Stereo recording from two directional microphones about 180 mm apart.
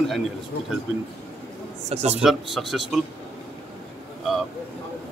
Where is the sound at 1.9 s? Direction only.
35° right (ahead or behind).